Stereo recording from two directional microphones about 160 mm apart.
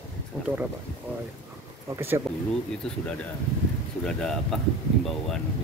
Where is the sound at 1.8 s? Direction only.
15° right (ahead or behind).